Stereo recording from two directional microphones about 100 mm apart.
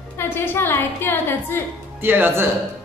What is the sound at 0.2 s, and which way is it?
A woman's voice, 20° left (ahead or behind).